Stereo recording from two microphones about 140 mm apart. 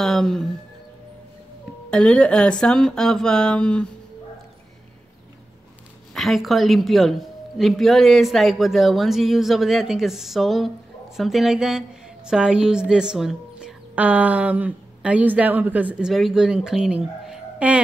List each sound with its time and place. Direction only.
0.0 s a man's voice: 5° left (ahead or behind)
1.9 s speech: 5° left (ahead or behind)
6.1 s a man's voice: centre (ahead or behind)